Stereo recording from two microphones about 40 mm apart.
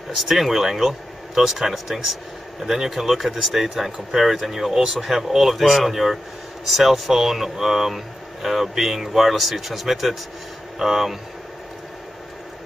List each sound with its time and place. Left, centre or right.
0.1 s speech: centre